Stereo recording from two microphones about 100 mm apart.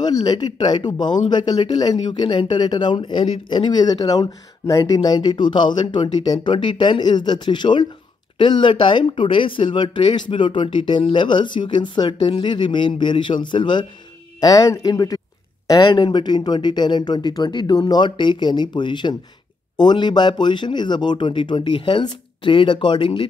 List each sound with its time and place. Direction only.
0.0 s speech: 45° left (ahead or behind)
14.4 s speech: 40° left (ahead or behind)
15.8 s speech: 50° left (ahead or behind)